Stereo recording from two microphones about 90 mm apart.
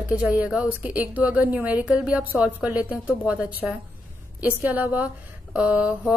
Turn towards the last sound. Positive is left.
turn(degrees=-15)  # may be behind; listen again after turning